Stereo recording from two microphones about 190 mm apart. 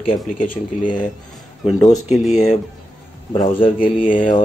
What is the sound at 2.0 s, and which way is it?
Speech, centre (ahead or behind).